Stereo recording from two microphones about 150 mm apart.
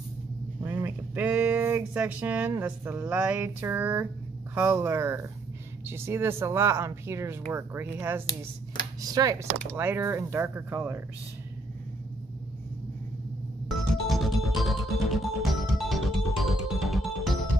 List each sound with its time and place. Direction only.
0.8 s a sound: 15° right (ahead or behind)
2.6 s speech: 10° right (ahead or behind)
13.7 s music: centre (ahead or behind)